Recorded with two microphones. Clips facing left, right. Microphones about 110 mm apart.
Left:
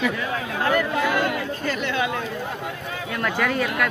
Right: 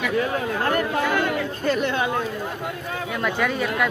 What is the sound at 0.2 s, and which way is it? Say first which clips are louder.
Speech: right 2 dB; 45° right (ahead or behind).